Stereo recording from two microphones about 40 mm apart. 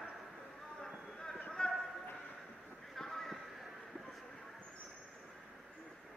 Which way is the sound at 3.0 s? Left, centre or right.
Centre.